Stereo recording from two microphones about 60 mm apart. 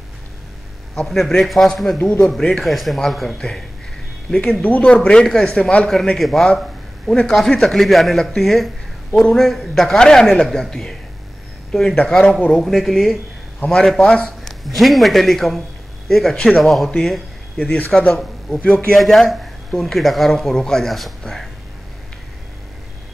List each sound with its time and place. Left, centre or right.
1.0 s a man's voice: centre
2.0 s speech: centre
2.4 s a man's voice: centre
4.4 s speech: left
6.1 s a man's voice: centre
12.0 s speech: centre
12.5 s a man's voice: centre
13.7 s speech: centre
14.1 s a sound: centre
14.6 s a man's voice: centre
17.9 s speech: centre
18.9 s a man's voice: centre